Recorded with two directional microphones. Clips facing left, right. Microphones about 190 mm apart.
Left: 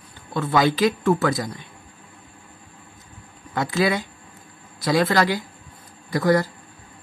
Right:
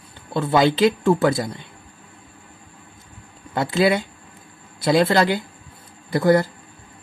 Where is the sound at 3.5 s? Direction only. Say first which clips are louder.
Right 3 dB; 30° right (ahead or behind).